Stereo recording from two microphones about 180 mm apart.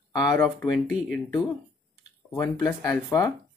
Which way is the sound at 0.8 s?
Centre (ahead or behind).